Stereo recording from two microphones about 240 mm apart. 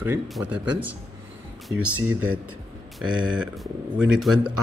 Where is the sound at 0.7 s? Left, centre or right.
Right.